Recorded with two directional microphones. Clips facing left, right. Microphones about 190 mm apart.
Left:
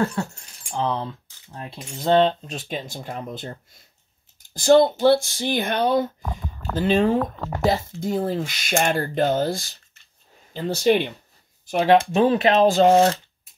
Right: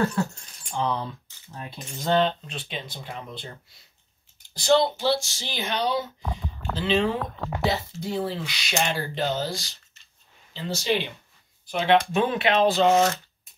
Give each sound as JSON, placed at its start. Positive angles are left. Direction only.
{"t": 0.7, "sound": "speech", "side_deg": 25}
{"t": 12.0, "sound": "speech", "side_deg": 35}
{"t": 12.9, "sound": "speech", "side_deg": 30}